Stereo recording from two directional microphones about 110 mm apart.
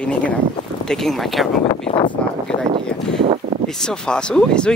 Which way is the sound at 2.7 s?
55° right (ahead or behind).